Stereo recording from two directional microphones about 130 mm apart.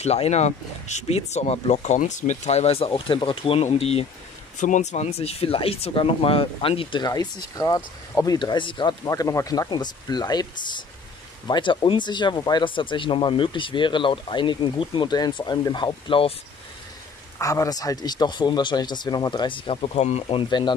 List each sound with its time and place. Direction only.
0.0 s speech: 55° left (ahead or behind)
4.6 s speech: 70° left (ahead or behind); by 8.9 s 40° left (ahead or behind)
9.0 s speech: 25° left (ahead or behind); by 16.3 s 45° left (ahead or behind)
17.4 s speech: 25° left (ahead or behind); by 20.4 s 50° left (ahead or behind)
20.4 s speech: 35° left (ahead or behind)